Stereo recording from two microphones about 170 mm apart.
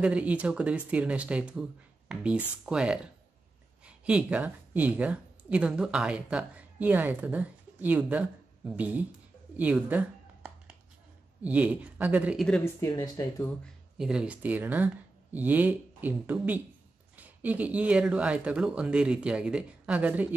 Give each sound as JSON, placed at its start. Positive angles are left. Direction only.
{"t": 0.0, "sound": "speech", "side_deg": -5}
{"t": 12.8, "sound": "speech", "side_deg": 20}
{"t": 13.9, "sound": "speech", "side_deg": -5}